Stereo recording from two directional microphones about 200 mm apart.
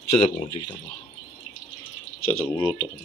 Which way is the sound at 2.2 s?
90° left.